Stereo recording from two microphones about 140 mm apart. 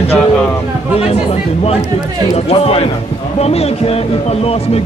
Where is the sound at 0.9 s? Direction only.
45° left (ahead or behind).